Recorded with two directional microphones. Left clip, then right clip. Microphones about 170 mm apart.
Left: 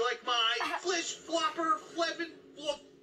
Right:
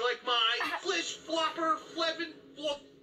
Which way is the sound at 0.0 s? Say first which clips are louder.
Right 1 dB; 25° right (ahead or behind).